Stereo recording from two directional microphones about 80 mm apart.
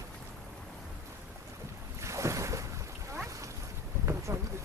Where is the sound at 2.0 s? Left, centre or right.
Right.